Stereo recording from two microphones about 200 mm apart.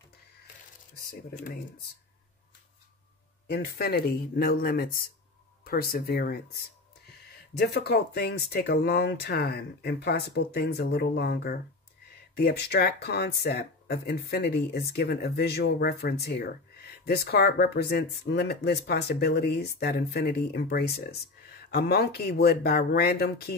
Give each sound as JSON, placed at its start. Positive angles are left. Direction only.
{"t": 0.9, "sound": "speech", "side_deg": 45}
{"t": 3.4, "sound": "speech", "side_deg": 50}
{"t": 7.5, "sound": "speech", "side_deg": 55}